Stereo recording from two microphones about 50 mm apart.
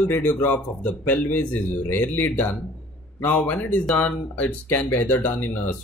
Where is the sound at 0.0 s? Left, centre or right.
Left.